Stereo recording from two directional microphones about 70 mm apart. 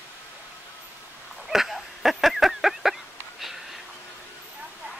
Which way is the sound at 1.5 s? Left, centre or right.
Centre.